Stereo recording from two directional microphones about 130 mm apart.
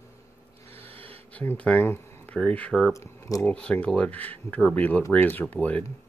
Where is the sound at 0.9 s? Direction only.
45° right (ahead or behind).